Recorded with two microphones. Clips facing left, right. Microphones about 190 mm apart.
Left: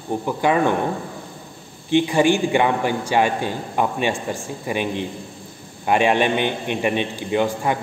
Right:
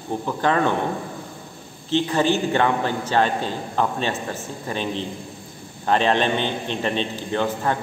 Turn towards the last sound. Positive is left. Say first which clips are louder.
# left 2 dB
turn(degrees=15)  # may be behind; listen again after turning